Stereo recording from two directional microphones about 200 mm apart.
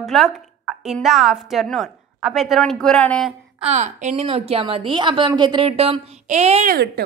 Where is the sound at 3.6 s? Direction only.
35° right (ahead or behind).